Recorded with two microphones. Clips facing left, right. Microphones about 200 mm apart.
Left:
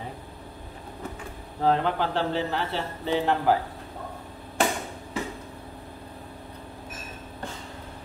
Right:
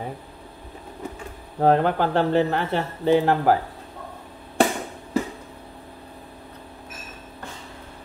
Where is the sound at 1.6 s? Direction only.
50° right (ahead or behind).